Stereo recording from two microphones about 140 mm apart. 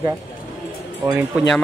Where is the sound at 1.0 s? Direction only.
15° right (ahead or behind).